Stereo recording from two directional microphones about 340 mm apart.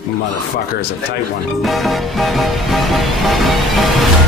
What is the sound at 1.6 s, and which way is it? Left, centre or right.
Music, centre.